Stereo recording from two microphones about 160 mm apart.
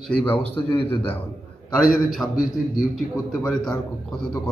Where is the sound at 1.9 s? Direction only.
Centre (ahead or behind).